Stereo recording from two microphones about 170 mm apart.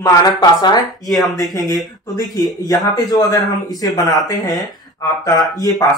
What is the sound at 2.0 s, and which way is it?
Speech, 20° left (ahead or behind).